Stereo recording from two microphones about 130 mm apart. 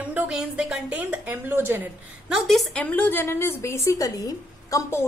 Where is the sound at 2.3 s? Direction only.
Centre (ahead or behind).